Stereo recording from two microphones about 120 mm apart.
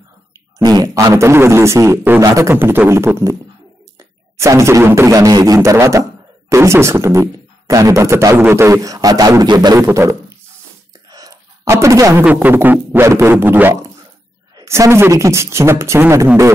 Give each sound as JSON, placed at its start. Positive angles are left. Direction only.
{"t": 0.6, "sound": "speech", "side_deg": -30}
{"t": 4.4, "sound": "speech", "side_deg": -25}
{"t": 9.8, "sound": "speech", "side_deg": -25}
{"t": 11.1, "sound": "a sound", "side_deg": -30}
{"t": 12.3, "sound": "a sound", "side_deg": -15}
{"t": 14.6, "sound": "speech", "side_deg": -25}